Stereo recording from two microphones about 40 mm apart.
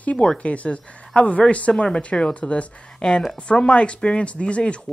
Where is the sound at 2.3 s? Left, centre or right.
Left.